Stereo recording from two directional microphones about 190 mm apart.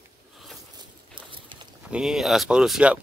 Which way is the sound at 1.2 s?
25° right (ahead or behind).